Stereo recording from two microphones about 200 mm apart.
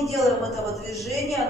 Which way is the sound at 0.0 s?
Centre (ahead or behind).